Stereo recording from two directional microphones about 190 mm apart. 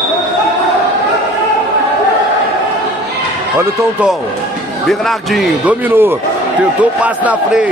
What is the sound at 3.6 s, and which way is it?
Speech, 5° right (ahead or behind).